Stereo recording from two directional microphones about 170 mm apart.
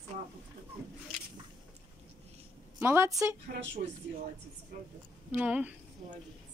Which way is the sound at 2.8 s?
15° right (ahead or behind).